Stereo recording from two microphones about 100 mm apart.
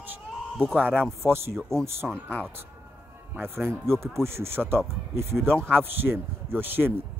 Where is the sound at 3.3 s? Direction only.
20° right (ahead or behind).